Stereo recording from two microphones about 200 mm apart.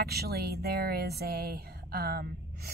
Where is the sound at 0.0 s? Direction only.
50° right (ahead or behind).